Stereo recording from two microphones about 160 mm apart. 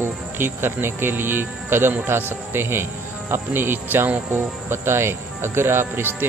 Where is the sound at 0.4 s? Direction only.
15° right (ahead or behind).